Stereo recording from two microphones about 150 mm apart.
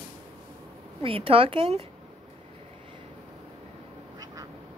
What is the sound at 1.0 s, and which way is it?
Speech, 40° right (ahead or behind).